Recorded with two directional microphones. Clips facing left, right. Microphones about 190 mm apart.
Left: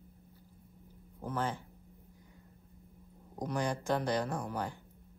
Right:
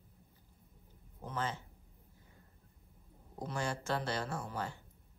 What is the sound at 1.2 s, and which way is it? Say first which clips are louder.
Speech: left 4 dB; 10° left (ahead or behind).